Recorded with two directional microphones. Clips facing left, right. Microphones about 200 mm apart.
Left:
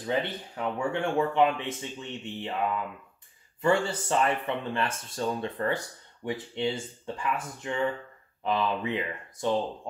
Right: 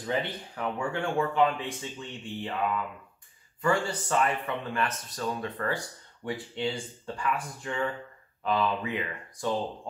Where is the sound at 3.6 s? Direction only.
25° left (ahead or behind).